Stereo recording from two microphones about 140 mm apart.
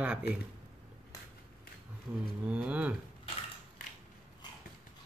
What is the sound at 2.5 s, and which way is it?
Speech, 10° right (ahead or behind).